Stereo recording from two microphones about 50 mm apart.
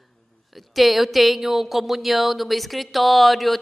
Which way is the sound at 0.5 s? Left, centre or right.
Centre.